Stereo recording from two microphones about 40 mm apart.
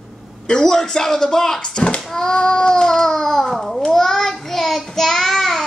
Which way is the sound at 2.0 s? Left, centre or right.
Centre.